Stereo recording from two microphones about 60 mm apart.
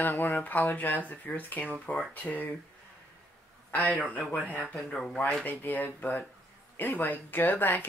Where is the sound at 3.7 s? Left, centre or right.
Left.